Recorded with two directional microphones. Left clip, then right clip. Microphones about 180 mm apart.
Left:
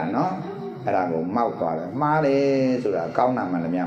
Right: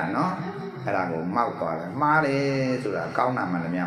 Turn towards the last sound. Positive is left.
turn(degrees=15)  # may be behind; listen again after turning